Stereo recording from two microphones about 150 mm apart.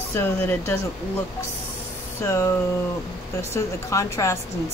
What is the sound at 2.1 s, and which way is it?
A woman's voice, 20° left (ahead or behind).